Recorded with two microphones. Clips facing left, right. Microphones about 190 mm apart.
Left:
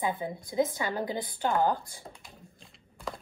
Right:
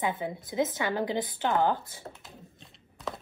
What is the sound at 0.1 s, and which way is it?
A woman's voice, 20° right (ahead or behind).